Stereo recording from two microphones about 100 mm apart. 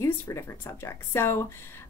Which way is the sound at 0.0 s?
30° left (ahead or behind).